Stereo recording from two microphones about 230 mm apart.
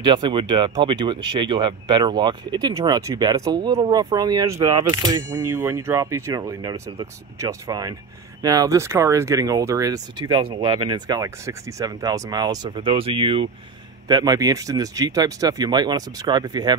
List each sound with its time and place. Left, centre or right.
0.0 s speech: right